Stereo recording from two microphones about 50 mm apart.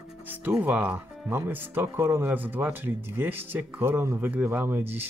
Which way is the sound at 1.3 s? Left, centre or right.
Right.